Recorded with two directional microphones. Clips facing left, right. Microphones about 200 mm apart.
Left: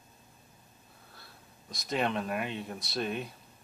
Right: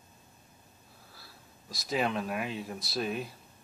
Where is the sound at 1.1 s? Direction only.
Centre (ahead or behind).